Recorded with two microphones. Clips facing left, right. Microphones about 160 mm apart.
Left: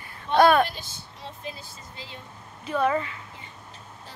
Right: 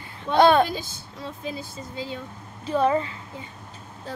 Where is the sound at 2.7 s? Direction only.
30° right (ahead or behind).